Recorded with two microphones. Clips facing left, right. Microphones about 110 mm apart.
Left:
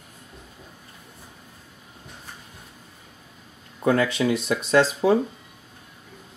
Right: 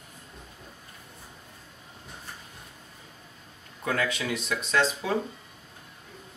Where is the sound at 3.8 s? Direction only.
25° left (ahead or behind).